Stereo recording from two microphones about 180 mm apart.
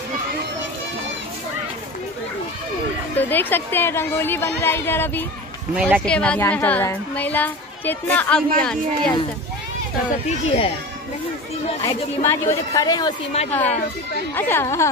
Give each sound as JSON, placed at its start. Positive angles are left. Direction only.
{"t": 3.2, "sound": "a woman's voice", "side_deg": 10}
{"t": 5.8, "sound": "speech", "side_deg": -10}
{"t": 6.0, "sound": "a woman's voice", "side_deg": 5}
{"t": 10.4, "sound": "a child's voice", "side_deg": 35}
{"t": 11.8, "sound": "a woman's voice", "side_deg": 15}
{"t": 14.3, "sound": "a woman's voice", "side_deg": 15}